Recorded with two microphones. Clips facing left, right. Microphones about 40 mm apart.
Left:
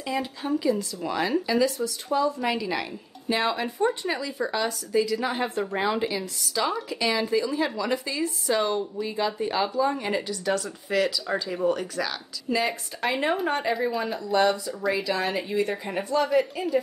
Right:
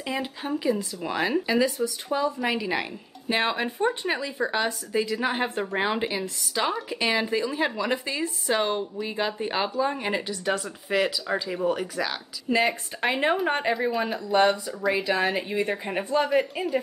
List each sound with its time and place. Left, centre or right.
0.0 s a woman's voice: right
13.0 s a woman's voice: right